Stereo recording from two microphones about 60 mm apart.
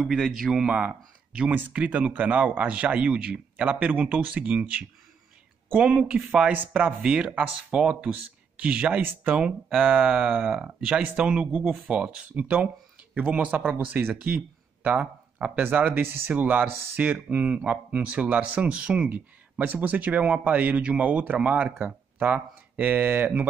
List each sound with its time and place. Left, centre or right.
0.0 s speech: centre
0.7 s speech: centre